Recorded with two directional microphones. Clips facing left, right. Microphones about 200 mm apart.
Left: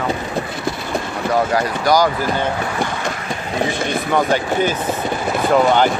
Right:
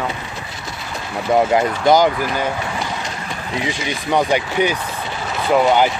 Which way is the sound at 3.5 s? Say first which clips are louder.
Left 4 dB; 50° left (ahead or behind).